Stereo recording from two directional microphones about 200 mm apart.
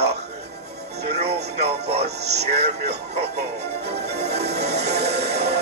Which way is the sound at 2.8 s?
55° right (ahead or behind).